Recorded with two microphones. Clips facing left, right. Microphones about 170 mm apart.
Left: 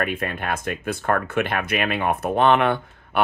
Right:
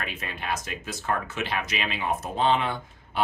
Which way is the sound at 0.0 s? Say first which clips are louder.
Left 9 dB; 55° left (ahead or behind).